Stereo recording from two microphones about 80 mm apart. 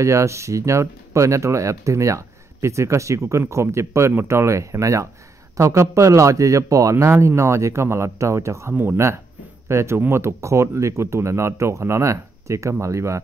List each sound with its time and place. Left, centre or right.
0.0 s speech: right